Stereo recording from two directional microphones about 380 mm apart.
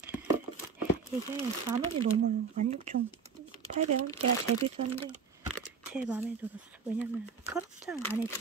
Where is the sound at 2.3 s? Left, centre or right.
Centre.